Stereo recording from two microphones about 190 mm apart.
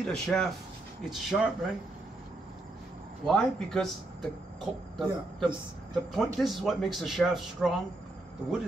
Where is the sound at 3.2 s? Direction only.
5° left (ahead or behind).